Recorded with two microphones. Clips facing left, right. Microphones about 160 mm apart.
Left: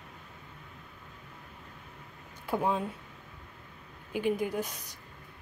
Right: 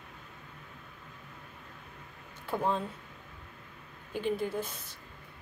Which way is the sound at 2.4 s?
10° left (ahead or behind).